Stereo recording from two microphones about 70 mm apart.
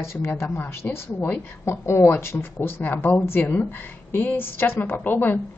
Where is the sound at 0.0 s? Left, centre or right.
Left.